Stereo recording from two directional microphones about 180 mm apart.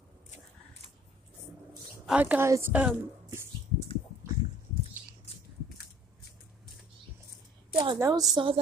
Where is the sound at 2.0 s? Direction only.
5° right (ahead or behind).